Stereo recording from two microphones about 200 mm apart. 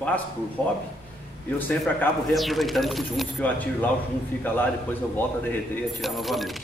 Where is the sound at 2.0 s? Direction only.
Centre (ahead or behind).